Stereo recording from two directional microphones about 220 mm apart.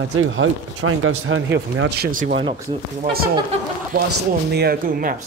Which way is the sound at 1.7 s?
50° right (ahead or behind).